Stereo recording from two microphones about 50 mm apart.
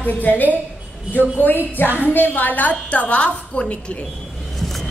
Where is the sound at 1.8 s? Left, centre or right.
Right.